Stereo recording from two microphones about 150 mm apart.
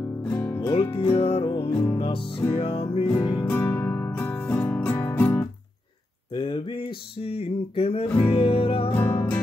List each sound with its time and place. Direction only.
0.2 s music: 10° left (ahead or behind)
0.9 s music: 40° left (ahead or behind)
1.7 s music: 15° left (ahead or behind)
2.0 s music: 35° left (ahead or behind)
3.2 s music: 25° left (ahead or behind)
3.4 s music: 15° left (ahead or behind)
6.3 s a sound: 35° left (ahead or behind)
7.2 s music: 40° left (ahead or behind)
8.9 s music: 15° left (ahead or behind)